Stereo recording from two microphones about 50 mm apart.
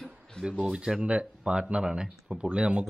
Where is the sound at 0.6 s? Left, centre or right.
Centre.